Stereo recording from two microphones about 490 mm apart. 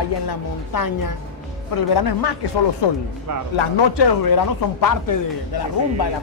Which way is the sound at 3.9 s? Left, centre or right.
Left.